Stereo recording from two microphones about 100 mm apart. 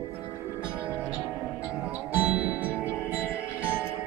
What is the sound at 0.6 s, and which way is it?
Music, 10° right (ahead or behind).